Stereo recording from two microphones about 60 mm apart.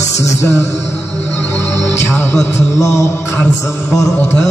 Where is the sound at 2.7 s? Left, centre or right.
Left.